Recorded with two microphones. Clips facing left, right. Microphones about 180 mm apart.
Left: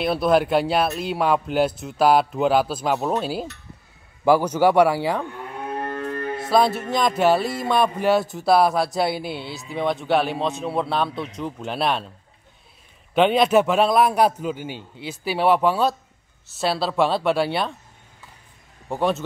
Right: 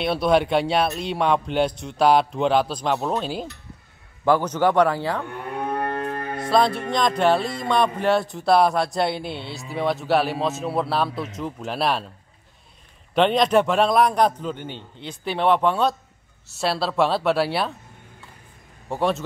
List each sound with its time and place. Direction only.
0.0 s music: centre (ahead or behind)
4.2 s a man's voice: 10° left (ahead or behind)
6.5 s music: 5° left (ahead or behind)
13.1 s music: 5° left (ahead or behind)
18.9 s music: centre (ahead or behind)